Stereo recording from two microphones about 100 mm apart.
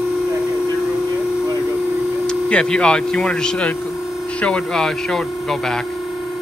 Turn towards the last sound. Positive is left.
turn(degrees=5)  # may be behind; listen again after turning